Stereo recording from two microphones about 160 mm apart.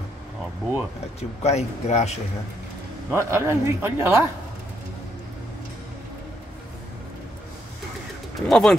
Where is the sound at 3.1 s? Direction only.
15° right (ahead or behind).